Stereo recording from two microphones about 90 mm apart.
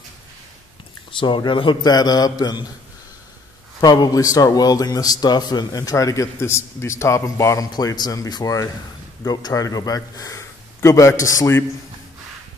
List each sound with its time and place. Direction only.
1.2 s a man's voice: 65° left (ahead or behind); by 2.6 s 50° left (ahead or behind)
3.8 s a man's voice: 50° left (ahead or behind)
7.7 s a man's voice: 50° left (ahead or behind); by 11.6 s 35° left (ahead or behind)